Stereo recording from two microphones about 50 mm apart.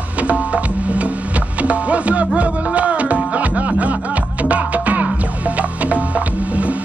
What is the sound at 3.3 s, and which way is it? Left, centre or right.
Music, right.